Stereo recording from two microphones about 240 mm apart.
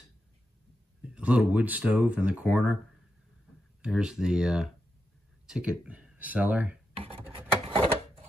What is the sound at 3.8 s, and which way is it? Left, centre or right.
Speech, centre.